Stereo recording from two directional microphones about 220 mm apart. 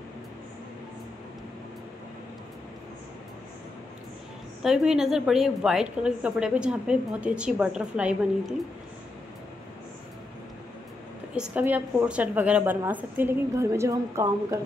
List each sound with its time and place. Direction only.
4.6 s a woman's voice: centre (ahead or behind)
11.3 s a woman's voice: 5° right (ahead or behind)